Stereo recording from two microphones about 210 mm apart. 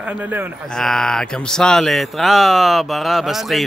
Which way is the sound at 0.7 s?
5° left (ahead or behind).